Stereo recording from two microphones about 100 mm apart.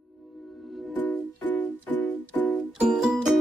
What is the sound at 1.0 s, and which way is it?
Music, 15° left (ahead or behind).